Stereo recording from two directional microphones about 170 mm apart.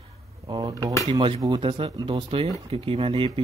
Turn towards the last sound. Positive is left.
turn(degrees=-30)  # may be behind; listen again after turning